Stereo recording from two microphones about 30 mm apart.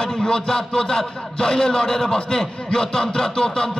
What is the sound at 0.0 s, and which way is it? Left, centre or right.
Speech, left.